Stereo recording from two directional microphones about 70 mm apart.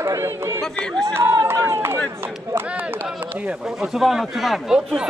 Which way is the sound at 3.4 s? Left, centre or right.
Centre.